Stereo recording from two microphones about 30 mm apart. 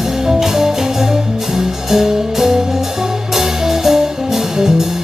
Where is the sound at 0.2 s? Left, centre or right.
Centre.